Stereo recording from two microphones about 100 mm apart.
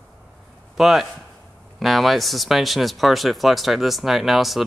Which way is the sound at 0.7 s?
5° right (ahead or behind).